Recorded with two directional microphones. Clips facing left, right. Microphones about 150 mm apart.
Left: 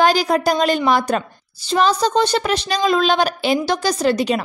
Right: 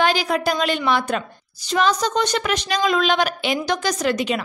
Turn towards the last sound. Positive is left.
turn(degrees=35)  # may be behind; listen again after turning